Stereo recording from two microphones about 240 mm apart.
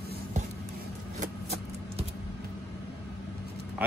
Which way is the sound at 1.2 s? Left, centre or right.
Right.